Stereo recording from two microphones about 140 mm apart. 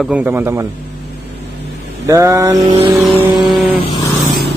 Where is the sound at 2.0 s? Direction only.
20° right (ahead or behind).